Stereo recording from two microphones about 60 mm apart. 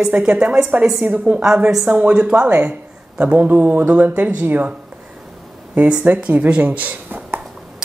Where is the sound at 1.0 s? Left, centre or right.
Right.